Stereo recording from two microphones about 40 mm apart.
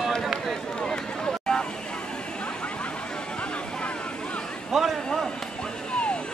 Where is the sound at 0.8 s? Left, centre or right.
Centre.